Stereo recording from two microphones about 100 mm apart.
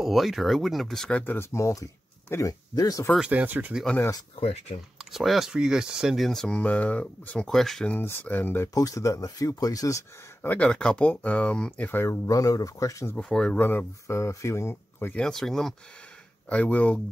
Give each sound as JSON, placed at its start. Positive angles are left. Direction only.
{"t": 0.0, "sound": "speech", "side_deg": 0}
{"t": 1.2, "sound": "speech", "side_deg": 20}
{"t": 2.7, "sound": "speech", "side_deg": 35}
{"t": 3.2, "sound": "speech", "side_deg": -15}
{"t": 4.4, "sound": "speech", "side_deg": 90}
{"t": 5.1, "sound": "speech", "side_deg": 0}
{"t": 7.9, "sound": "speech", "side_deg": 20}
{"t": 8.7, "sound": "speech", "side_deg": 35}
{"t": 10.5, "sound": "speech", "side_deg": 10}
{"t": 13.1, "sound": "speech", "side_deg": 10}
{"t": 13.6, "sound": "speech", "side_deg": 20}
{"t": 15.1, "sound": "speech", "side_deg": 5}